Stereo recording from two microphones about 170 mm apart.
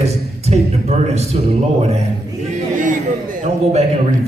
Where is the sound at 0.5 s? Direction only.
40° right (ahead or behind).